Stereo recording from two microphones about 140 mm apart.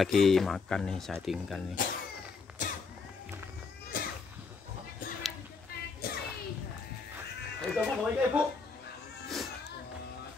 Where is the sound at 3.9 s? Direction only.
85° left.